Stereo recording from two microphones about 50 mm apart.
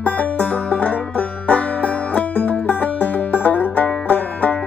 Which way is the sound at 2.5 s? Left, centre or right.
Left.